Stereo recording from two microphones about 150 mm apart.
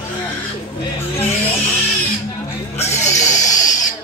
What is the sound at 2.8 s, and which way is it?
Music, 50° left (ahead or behind).